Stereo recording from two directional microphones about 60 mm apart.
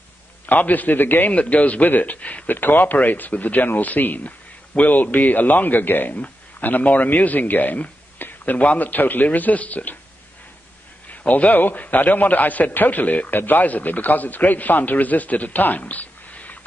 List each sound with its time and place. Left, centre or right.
0.5 s a man's voice: left
11.1 s a man's voice: left